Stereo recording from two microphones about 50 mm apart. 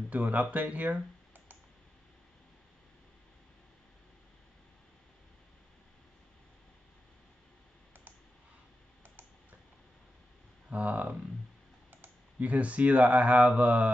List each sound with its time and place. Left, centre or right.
0.1 s speech: right
10.7 s speech: right
12.4 s speech: right